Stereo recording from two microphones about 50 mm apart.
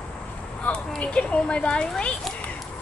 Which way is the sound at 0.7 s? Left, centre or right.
Left.